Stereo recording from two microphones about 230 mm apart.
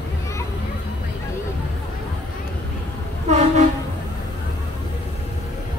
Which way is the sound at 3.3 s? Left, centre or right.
Right.